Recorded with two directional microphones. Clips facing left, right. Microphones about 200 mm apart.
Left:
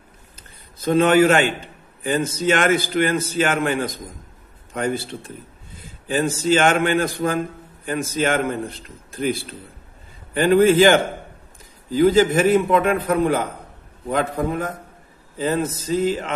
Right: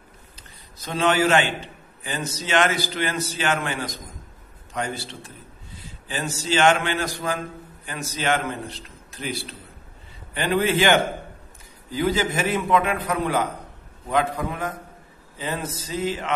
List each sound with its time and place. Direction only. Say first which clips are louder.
0.4 s a man's voice: left 2 dB; 55° left (ahead or behind)